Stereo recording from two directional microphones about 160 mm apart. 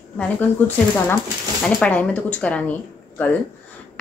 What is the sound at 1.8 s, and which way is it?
Speech, 10° left (ahead or behind).